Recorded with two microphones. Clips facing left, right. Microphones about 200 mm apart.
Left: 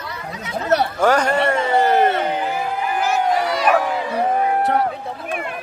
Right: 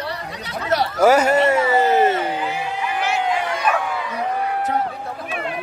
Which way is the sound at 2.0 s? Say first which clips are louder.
Even; 60° left (ahead or behind).